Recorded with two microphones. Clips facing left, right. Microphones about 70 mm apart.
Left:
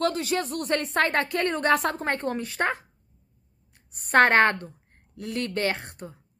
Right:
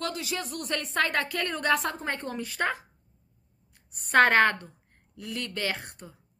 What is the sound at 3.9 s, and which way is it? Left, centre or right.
A woman's voice, left.